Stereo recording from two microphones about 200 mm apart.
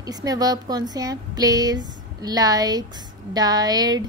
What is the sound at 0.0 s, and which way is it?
Speech, 20° right (ahead or behind).